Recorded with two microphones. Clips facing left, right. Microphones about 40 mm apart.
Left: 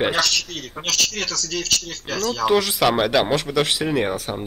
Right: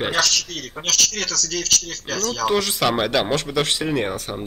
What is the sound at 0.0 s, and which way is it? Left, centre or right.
Speech, centre.